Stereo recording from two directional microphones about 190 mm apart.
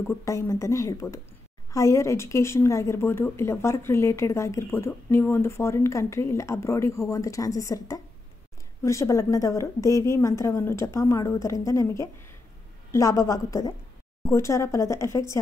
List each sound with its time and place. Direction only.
0.1 s speech: 15° left (ahead or behind)